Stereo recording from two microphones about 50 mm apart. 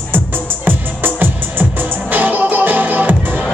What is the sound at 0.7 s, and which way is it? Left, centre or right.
Music, right.